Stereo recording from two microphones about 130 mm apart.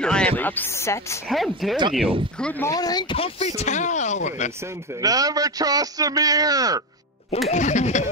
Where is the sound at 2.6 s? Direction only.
30° left (ahead or behind).